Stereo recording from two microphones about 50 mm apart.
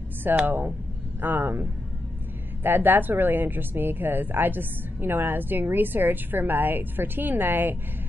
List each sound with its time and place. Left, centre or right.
0.5 s a woman's voice: right
2.6 s a woman's voice: right